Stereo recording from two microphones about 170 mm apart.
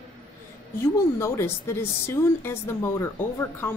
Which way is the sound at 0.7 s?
15° left (ahead or behind).